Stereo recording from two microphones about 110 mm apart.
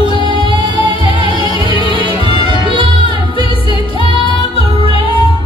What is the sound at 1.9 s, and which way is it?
Music, 45° right (ahead or behind).